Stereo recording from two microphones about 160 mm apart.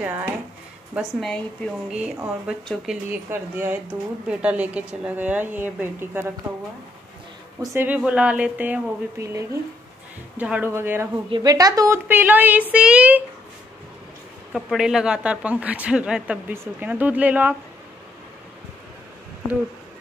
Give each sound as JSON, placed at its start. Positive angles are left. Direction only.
{"t": 0.0, "sound": "speech", "side_deg": -10}
{"t": 1.2, "sound": "speech", "side_deg": 5}
{"t": 1.9, "sound": "a woman's voice", "side_deg": -5}
{"t": 7.7, "sound": "speech", "side_deg": -10}
{"t": 11.2, "sound": "a woman's voice", "side_deg": -25}
{"t": 14.5, "sound": "speech", "side_deg": 0}